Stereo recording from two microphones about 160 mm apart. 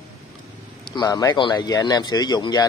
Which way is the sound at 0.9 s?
25° left (ahead or behind).